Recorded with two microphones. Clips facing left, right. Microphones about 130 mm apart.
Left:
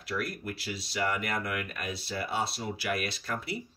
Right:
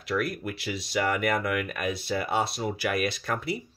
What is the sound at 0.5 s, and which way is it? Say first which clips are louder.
Speech: right 4 dB; 60° right (ahead or behind).